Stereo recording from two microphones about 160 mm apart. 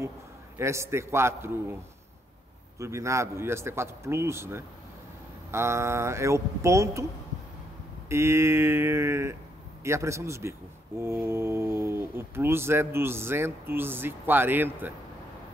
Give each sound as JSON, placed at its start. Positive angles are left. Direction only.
{"t": 0.6, "sound": "speech", "side_deg": -15}
{"t": 2.8, "sound": "speech", "side_deg": -20}
{"t": 8.1, "sound": "speech", "side_deg": -15}